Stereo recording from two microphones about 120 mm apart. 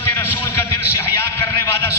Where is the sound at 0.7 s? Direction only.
20° left (ahead or behind).